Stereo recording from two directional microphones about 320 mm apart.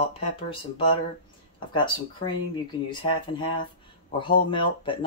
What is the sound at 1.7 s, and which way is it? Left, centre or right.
Speech, centre.